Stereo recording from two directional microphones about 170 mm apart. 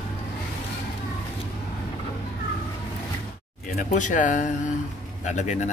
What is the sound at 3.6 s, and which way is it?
Speech, 50° left (ahead or behind).